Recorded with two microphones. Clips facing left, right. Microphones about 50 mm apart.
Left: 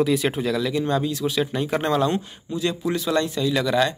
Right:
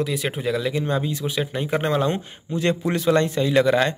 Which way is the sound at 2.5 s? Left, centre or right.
Right.